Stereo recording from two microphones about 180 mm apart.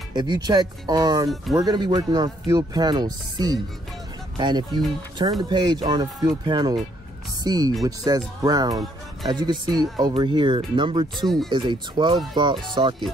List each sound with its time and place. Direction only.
0.1 s speech: 25° right (ahead or behind)